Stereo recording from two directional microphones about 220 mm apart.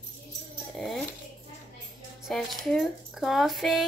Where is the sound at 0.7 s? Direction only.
Centre (ahead or behind).